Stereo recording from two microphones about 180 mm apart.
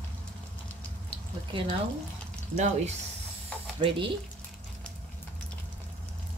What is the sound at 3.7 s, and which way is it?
Speech, 25° right (ahead or behind).